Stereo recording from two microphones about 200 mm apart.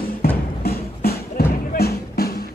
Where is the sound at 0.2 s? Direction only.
50° left (ahead or behind).